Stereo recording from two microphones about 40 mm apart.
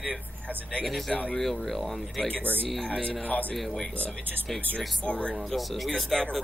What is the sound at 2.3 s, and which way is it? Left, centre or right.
Speech, right.